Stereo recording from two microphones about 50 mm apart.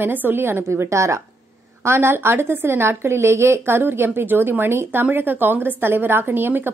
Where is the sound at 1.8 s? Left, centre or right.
Right.